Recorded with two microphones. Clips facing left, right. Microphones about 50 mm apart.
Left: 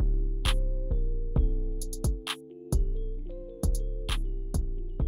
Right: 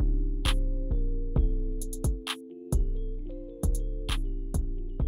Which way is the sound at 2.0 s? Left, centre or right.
Centre.